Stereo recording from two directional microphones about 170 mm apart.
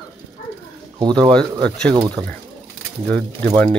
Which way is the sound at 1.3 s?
5° left (ahead or behind).